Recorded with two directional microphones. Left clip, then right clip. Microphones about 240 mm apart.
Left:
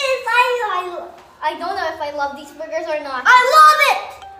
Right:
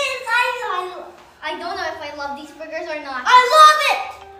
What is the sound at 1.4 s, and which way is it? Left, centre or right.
A woman's voice, left.